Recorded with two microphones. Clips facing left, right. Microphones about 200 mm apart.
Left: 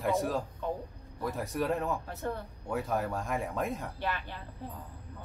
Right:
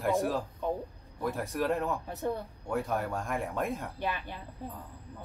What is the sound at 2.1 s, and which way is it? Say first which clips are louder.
Speech: right 3 dB; 15° right (ahead or behind).